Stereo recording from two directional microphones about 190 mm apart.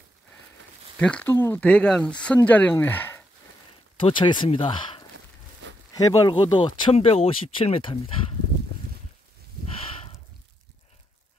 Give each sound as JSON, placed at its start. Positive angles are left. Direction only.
{"t": 0.9, "sound": "speech", "side_deg": 5}
{"t": 4.0, "sound": "speech", "side_deg": 25}
{"t": 5.1, "sound": "a sound", "side_deg": -80}
{"t": 5.9, "sound": "speech", "side_deg": 20}